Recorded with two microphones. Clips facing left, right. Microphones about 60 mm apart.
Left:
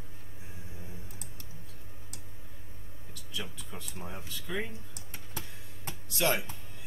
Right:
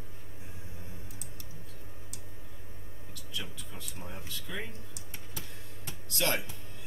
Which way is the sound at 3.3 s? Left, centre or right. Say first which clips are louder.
Left 2 dB; centre.